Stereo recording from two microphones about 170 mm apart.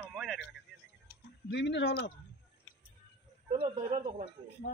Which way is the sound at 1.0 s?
90° left.